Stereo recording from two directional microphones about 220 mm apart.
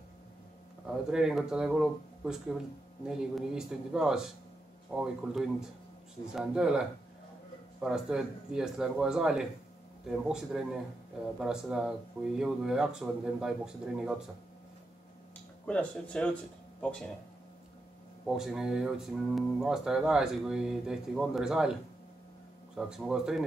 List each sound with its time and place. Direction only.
0.8 s speech: centre (ahead or behind)
7.8 s speech: 5° right (ahead or behind)
15.6 s speech: 5° left (ahead or behind)
18.2 s speech: centre (ahead or behind)
22.8 s speech: 5° right (ahead or behind)